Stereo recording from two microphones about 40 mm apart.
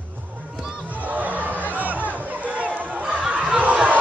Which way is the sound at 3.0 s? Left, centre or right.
Centre.